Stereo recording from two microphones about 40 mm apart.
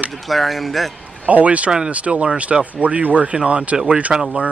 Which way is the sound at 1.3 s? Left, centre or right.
Right.